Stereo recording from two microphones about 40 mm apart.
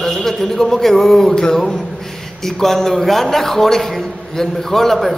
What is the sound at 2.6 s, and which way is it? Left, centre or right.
A man's voice, centre.